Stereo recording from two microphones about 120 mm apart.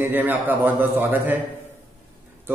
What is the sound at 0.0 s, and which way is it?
A man's voice, 15° right (ahead or behind).